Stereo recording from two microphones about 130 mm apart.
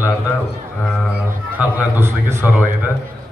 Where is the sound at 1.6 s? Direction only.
15° right (ahead or behind).